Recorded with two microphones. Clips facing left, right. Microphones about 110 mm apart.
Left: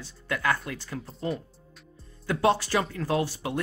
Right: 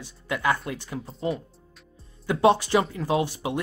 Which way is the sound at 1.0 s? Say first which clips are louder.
Right 3 dB; centre (ahead or behind).